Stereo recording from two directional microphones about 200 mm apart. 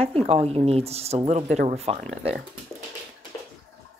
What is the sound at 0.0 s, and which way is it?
Speech, 30° right (ahead or behind).